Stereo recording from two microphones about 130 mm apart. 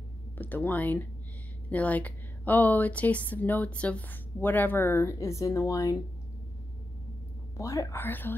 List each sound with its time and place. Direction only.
0.4 s a woman's voice: 15° left (ahead or behind)
7.5 s a woman's voice: 25° left (ahead or behind)